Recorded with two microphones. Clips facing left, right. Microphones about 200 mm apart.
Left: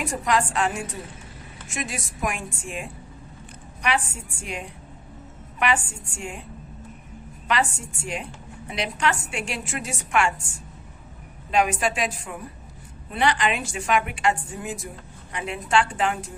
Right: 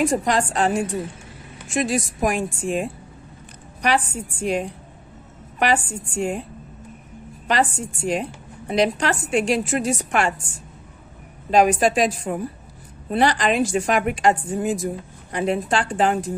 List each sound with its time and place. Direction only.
0.0 s a woman's voice: 35° right (ahead or behind)
7.4 s a woman's voice: 35° right (ahead or behind)
11.5 s a woman's voice: 40° right (ahead or behind)